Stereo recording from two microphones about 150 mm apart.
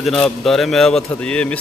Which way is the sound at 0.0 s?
Centre (ahead or behind).